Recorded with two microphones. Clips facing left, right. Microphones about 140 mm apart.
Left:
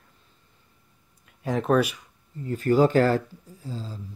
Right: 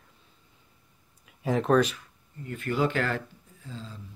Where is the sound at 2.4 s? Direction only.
35° left (ahead or behind).